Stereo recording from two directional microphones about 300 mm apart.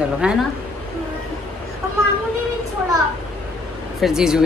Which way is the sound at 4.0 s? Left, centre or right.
Centre.